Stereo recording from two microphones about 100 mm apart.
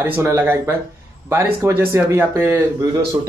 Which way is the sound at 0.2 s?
25° right (ahead or behind).